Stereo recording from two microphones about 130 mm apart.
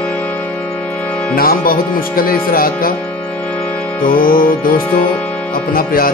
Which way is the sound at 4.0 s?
90° left.